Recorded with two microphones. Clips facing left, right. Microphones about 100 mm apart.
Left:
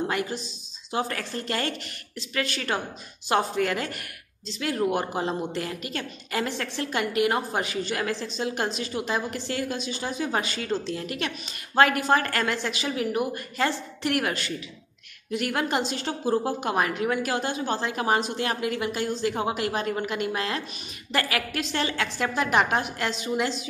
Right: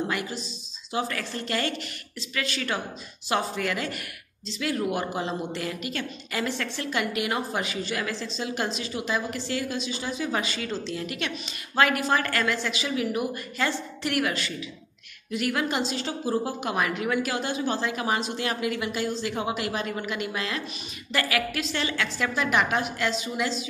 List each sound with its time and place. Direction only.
0.1 s a woman's voice: 55° left (ahead or behind)
15.3 s a woman's voice: 45° left (ahead or behind)